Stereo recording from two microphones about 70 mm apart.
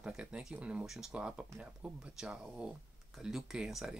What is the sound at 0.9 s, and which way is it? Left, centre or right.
Speech, centre.